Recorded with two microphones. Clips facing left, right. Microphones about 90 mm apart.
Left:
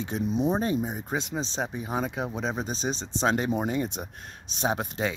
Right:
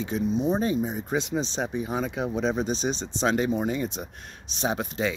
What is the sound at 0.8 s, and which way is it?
Speech, 45° left (ahead or behind).